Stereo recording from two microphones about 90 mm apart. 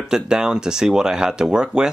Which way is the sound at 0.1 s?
10° right (ahead or behind).